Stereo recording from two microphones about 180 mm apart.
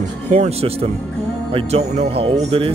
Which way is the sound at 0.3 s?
35° right (ahead or behind).